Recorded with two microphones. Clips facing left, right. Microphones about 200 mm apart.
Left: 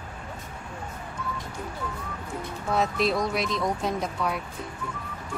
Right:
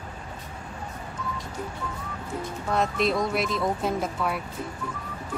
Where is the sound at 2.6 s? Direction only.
Centre (ahead or behind).